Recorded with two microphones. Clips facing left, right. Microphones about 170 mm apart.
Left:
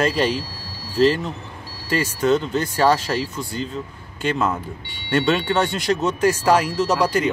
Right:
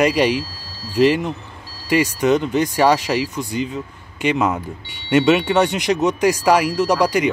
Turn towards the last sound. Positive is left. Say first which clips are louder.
# right 2 dB
turn(degrees=-15)  # may be behind; listen again after turning